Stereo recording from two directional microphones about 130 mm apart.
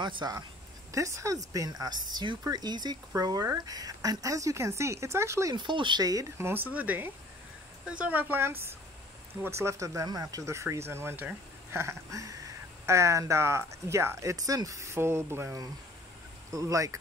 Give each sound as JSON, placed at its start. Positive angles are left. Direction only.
{"t": 0.0, "sound": "speech", "side_deg": -35}
{"t": 5.6, "sound": "a woman's voice", "side_deg": -35}